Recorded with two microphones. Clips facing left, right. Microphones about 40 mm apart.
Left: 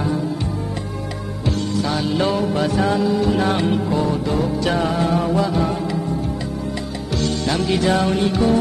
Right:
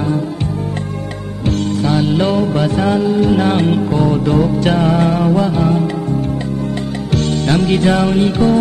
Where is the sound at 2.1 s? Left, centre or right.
Centre.